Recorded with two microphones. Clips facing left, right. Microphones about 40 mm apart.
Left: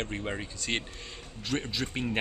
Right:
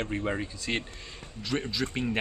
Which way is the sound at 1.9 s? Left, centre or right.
Centre.